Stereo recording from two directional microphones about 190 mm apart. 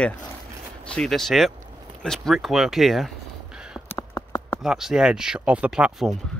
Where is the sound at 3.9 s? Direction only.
15° left (ahead or behind).